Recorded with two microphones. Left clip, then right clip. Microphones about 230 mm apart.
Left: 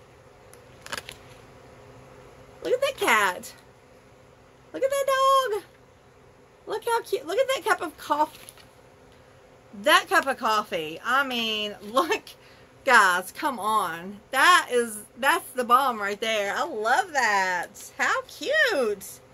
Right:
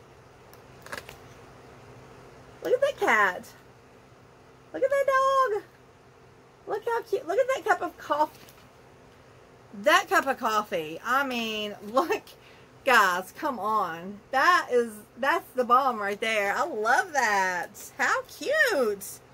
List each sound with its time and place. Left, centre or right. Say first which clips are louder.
0.8 s a sound: left 4 dB; centre
2.6 s speech: even; centre
4.7 s speech: even; centre
6.7 s speech: left 2 dB; centre
9.8 s a woman's voice: left 2 dB; centre